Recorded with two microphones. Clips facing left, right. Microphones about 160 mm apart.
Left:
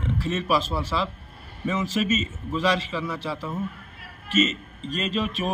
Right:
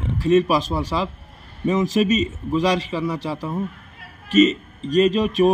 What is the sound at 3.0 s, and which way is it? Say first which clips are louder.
Speech: right 5 dB; 15° right (ahead or behind).